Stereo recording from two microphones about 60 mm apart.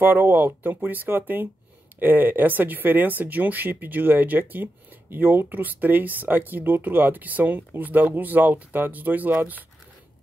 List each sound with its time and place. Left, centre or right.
0.0 s speech: right